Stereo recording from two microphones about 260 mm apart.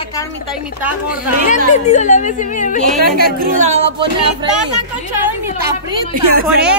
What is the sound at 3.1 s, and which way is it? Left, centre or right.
Speech, right.